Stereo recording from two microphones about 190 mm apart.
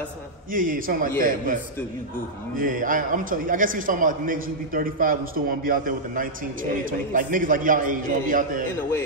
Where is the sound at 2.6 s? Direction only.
45° right (ahead or behind).